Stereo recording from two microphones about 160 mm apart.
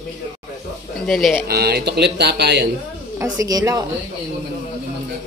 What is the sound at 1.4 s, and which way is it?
Speech, 80° right.